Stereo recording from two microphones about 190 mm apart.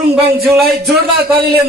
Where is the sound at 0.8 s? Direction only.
55° right (ahead or behind).